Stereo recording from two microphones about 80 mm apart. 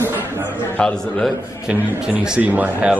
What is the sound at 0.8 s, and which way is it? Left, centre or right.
Speech, centre.